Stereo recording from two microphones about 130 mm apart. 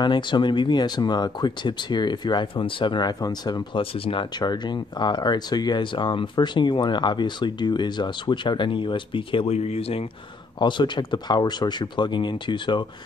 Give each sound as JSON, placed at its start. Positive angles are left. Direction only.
{"t": 0.0, "sound": "speech", "side_deg": 35}
{"t": 3.8, "sound": "speech", "side_deg": 45}
{"t": 10.6, "sound": "speech", "side_deg": 35}